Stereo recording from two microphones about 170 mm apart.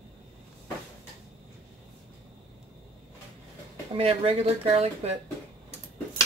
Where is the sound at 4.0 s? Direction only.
35° right (ahead or behind).